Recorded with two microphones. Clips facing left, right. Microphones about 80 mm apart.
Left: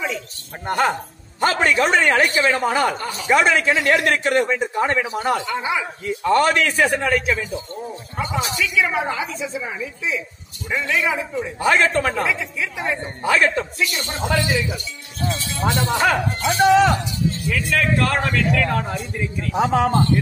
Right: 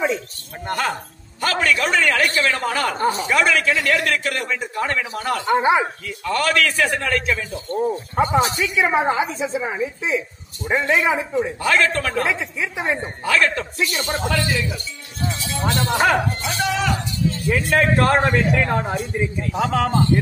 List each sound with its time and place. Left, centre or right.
0.7 s a man's voice: centre
3.0 s a woman's voice: right
3.3 s a man's voice: left
5.4 s a woman's voice: right
6.0 s a man's voice: left; by 7.4 s centre
7.7 s a woman's voice: right
11.6 s a man's voice: centre
12.3 s a man's voice: right
13.2 s a man's voice: centre
13.7 s a woman's voice: right
15.6 s speech: centre
16.4 s a man's voice: left
17.5 s a man's voice: right
19.5 s a man's voice: centre